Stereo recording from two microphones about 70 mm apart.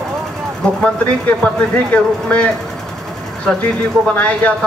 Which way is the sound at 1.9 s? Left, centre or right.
Centre.